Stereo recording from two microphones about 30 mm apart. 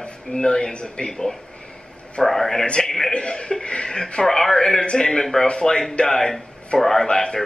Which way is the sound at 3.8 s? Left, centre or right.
Left.